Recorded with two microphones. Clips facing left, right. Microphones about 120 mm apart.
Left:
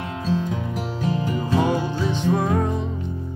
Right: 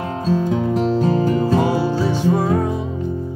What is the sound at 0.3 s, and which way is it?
Music, 40° right (ahead or behind).